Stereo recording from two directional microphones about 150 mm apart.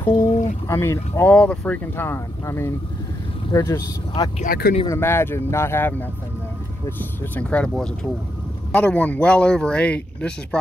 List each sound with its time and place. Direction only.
0.0 s speech: 15° left (ahead or behind)
4.5 s speech: 90° left
4.8 s speech: 15° left (ahead or behind)